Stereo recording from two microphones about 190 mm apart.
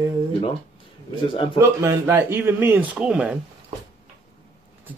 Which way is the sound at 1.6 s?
15° right (ahead or behind).